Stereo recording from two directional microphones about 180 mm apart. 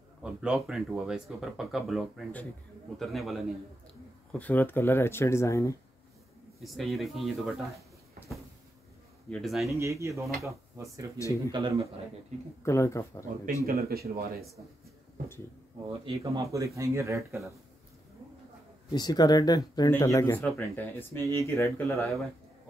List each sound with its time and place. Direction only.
0.2 s speech: 5° right (ahead or behind); by 5.8 s 15° left (ahead or behind)
6.6 s speech: centre (ahead or behind)
9.3 s speech: centre (ahead or behind)
9.8 s speech: 15° right (ahead or behind)
11.1 s speech: 15° left (ahead or behind)
11.5 s a man's voice: 25° right (ahead or behind)
12.6 s speech: 15° left (ahead or behind)
13.7 s speech: 60° right (ahead or behind)
16.2 s speech: 20° right (ahead or behind)
18.9 s speech: 20° left (ahead or behind)